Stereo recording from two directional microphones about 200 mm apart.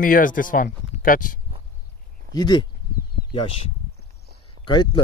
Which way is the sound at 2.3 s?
50° right (ahead or behind).